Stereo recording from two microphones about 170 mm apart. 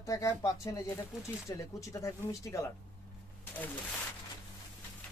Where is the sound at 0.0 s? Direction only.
20° left (ahead or behind).